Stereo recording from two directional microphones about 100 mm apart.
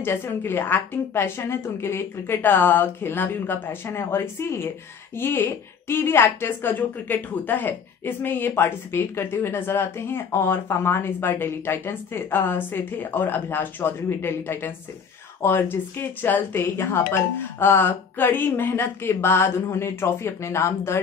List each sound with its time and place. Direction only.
0.0 s a woman's voice: 25° left (ahead or behind)